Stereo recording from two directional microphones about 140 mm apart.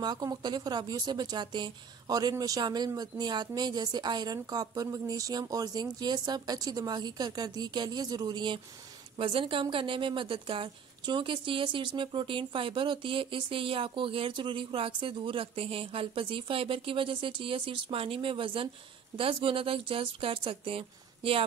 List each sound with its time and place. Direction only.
0.0 s a woman's voice: 30° right (ahead or behind)